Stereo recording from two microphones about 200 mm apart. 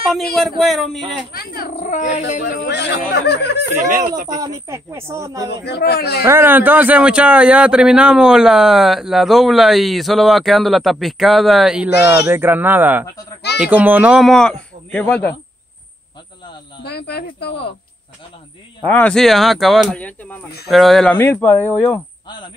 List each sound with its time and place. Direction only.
0.4 s a man's voice: centre (ahead or behind)
1.3 s speech: 50° left (ahead or behind)
4.3 s speech: 15° right (ahead or behind)
5.5 s speech: 55° left (ahead or behind)
6.2 s a man's voice: 10° right (ahead or behind); by 15.3 s 5° left (ahead or behind)
16.8 s speech: 55° left (ahead or behind)
18.9 s a man's voice: 5° left (ahead or behind)